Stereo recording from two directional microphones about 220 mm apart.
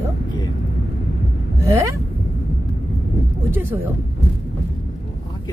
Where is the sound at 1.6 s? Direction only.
15° right (ahead or behind).